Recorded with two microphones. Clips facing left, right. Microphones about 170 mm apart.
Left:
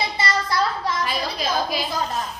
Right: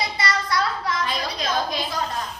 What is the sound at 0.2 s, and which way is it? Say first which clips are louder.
Child singing: left 2 dB; 25° left (ahead or behind).